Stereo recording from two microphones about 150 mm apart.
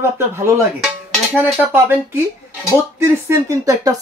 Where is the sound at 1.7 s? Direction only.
15° right (ahead or behind).